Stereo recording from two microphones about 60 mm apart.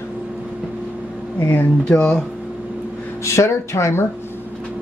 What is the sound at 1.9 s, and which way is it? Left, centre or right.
Speech, centre.